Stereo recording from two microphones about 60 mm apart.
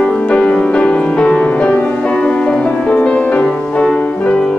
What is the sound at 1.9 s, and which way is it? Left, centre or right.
Music, centre.